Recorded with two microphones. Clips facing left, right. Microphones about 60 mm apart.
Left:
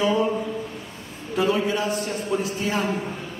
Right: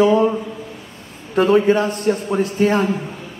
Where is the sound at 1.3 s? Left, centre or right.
Right.